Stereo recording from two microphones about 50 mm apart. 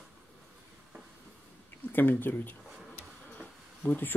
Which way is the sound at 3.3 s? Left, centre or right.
Left.